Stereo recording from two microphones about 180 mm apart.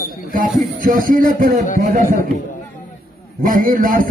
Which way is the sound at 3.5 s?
50° right (ahead or behind).